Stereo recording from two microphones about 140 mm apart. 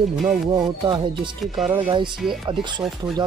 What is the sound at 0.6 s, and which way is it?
Speech, 35° right (ahead or behind).